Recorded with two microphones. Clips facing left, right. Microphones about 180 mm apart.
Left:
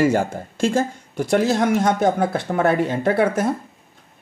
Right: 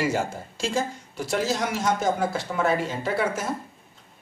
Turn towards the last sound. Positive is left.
turn(degrees=55)  # may be behind; listen again after turning